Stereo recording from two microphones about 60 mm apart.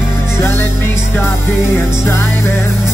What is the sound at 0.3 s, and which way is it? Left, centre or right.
Music, left.